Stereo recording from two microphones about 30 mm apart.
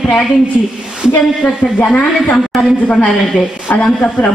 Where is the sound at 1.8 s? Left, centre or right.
Left.